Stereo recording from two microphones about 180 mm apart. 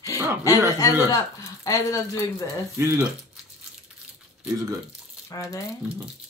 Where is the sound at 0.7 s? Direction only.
20° left (ahead or behind).